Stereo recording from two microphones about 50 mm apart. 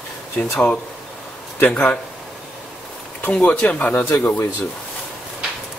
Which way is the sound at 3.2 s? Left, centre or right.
Left.